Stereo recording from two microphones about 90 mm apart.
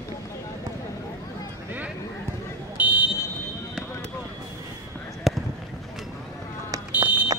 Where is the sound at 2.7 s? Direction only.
15° right (ahead or behind).